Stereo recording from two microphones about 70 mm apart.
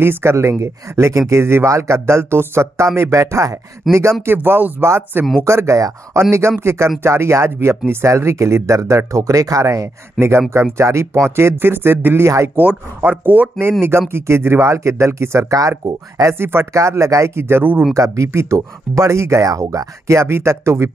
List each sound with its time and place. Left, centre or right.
0.0 s speech: right
10.1 s speech: right
13.6 s speech: right
15.8 s speech: right
16.3 s speech: right
16.7 s speech: right
17.9 s speech: right
20.1 s speech: right